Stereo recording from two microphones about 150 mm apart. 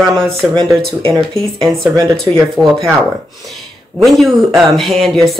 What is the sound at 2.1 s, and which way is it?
Speech, 5° left (ahead or behind).